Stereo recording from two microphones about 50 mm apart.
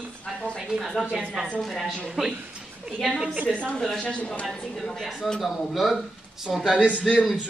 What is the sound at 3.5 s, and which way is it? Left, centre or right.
Speech, left.